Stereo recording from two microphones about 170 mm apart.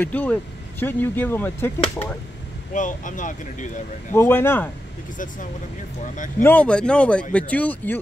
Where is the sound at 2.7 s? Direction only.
50° left (ahead or behind).